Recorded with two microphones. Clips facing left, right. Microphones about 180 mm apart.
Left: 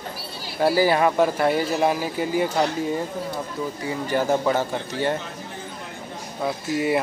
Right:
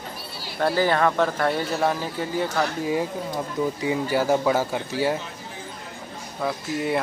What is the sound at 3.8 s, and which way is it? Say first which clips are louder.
Speech: even; 5° right (ahead or behind).